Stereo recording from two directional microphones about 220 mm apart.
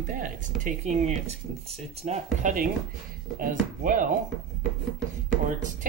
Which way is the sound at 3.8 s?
40° right (ahead or behind).